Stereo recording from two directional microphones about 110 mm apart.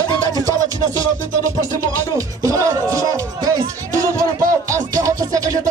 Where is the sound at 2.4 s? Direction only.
30° right (ahead or behind).